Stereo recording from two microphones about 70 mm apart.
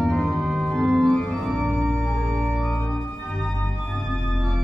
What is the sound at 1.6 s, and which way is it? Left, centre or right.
Music, centre.